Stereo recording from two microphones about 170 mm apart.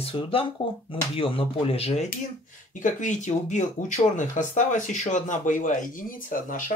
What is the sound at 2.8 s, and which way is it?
Speech, 45° left (ahead or behind).